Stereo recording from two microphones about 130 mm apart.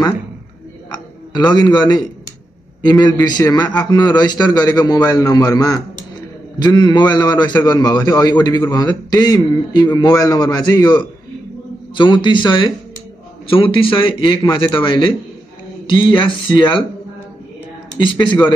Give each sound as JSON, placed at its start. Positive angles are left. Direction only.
{"t": 0.8, "sound": "a man's voice", "side_deg": 35}
{"t": 17.9, "sound": "a man's voice", "side_deg": 35}